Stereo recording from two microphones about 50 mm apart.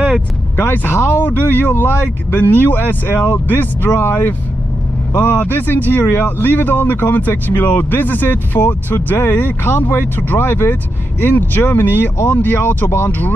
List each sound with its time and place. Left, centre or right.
0.6 s speech: left